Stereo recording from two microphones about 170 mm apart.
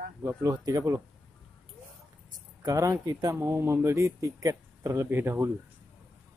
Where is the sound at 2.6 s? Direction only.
20° right (ahead or behind).